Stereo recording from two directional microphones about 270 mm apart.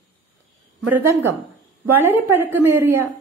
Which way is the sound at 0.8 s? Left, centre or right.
Centre.